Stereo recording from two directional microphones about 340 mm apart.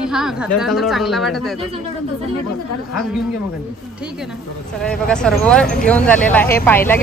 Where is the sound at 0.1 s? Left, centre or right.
Centre.